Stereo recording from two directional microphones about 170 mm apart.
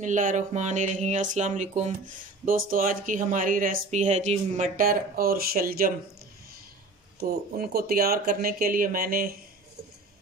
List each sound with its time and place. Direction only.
0.0 s speech: 50° right (ahead or behind)
7.2 s speech: 60° right (ahead or behind)